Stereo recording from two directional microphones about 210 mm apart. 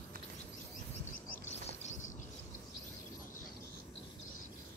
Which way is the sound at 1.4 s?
35° left (ahead or behind).